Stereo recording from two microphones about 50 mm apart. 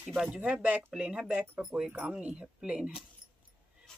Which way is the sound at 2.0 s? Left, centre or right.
Right.